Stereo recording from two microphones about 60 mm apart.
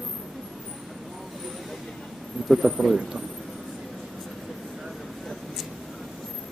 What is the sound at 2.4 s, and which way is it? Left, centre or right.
Speech, centre.